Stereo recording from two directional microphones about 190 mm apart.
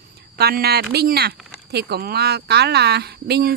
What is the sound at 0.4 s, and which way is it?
A woman's voice, 55° right (ahead or behind).